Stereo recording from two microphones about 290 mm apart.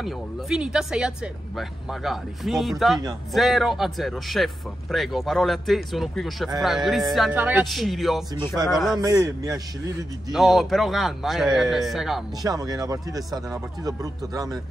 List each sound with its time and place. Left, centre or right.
0.0 s speech: centre
8.9 s speech: centre
10.3 s speech: centre
12.4 s speech: centre